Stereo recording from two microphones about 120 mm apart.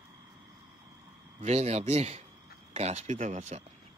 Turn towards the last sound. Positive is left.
turn(degrees=-70)  # may be behind; listen again after turning